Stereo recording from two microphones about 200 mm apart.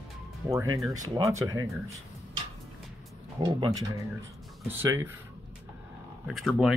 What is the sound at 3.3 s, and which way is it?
Speech, 20° right (ahead or behind).